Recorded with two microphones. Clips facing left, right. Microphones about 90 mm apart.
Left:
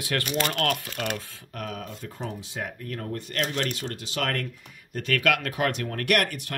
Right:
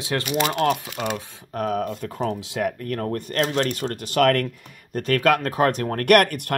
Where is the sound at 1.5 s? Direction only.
40° right (ahead or behind).